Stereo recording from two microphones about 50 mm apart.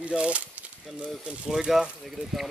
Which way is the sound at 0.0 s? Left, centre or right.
Right.